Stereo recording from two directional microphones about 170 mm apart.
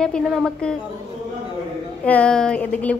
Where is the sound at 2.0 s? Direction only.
5° left (ahead or behind).